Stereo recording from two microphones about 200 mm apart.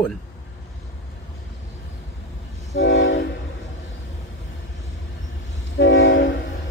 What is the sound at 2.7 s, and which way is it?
Train, 65° left (ahead or behind).